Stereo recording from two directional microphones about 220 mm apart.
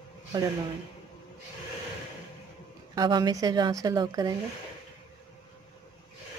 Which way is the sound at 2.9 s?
20° right (ahead or behind).